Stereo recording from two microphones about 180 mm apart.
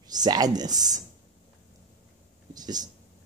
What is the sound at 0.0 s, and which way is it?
Speech, 20° right (ahead or behind).